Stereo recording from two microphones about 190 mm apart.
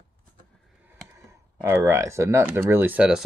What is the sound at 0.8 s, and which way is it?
Speech, 15° right (ahead or behind).